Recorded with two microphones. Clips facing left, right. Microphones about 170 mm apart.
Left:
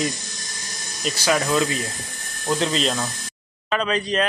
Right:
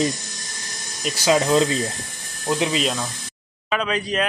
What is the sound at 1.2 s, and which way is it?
Speech, 20° right (ahead or behind).